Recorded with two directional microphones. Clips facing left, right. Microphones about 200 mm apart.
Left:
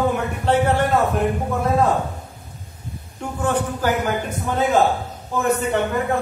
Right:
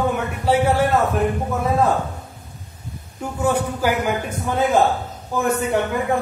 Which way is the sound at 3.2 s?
10° right (ahead or behind).